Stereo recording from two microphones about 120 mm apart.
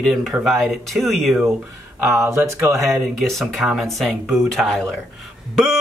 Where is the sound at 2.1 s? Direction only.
25° right (ahead or behind).